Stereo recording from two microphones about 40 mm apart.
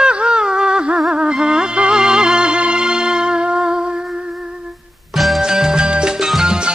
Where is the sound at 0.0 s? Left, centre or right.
Right.